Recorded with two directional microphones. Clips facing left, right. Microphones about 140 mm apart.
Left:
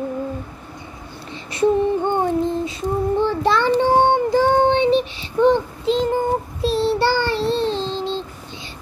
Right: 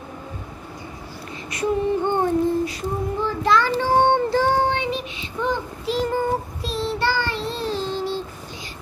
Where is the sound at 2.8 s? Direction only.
30° left (ahead or behind).